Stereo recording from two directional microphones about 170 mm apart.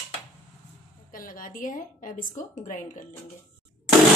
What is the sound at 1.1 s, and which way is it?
Speech, 55° left (ahead or behind).